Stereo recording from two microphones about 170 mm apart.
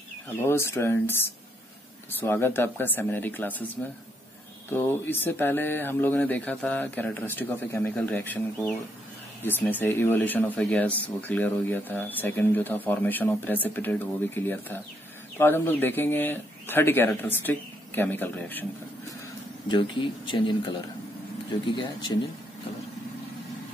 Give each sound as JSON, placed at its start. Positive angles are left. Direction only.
{"t": 0.4, "sound": "speech", "side_deg": 15}
{"t": 4.7, "sound": "speech", "side_deg": 10}
{"t": 19.7, "sound": "speech", "side_deg": 30}